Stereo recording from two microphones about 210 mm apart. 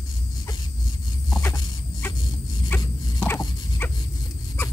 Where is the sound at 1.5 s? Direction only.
10° left (ahead or behind).